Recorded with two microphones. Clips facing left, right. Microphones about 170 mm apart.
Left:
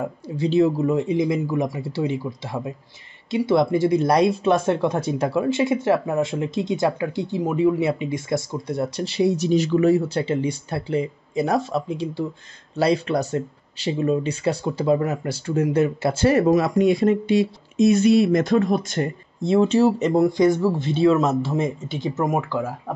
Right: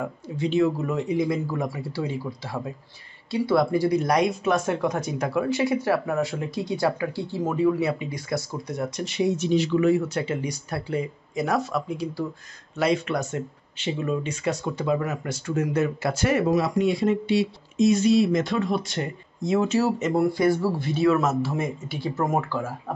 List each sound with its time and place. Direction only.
0.4 s speech: 30° left (ahead or behind); by 19.0 s 50° left (ahead or behind)
19.4 s speech: 30° left (ahead or behind); by 22.7 s 15° left (ahead or behind)